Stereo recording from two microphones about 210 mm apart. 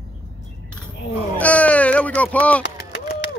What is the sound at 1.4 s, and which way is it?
Baby cry, 5° left (ahead or behind).